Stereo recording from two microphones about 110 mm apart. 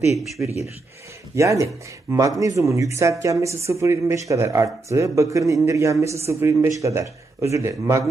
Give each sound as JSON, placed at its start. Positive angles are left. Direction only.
{"t": 1.3, "sound": "speech", "side_deg": -30}